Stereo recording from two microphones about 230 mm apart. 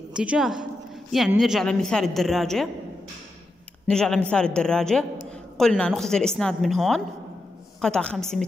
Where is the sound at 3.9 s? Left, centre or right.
Centre.